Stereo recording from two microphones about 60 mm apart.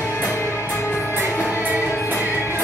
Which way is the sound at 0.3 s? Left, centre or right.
Left.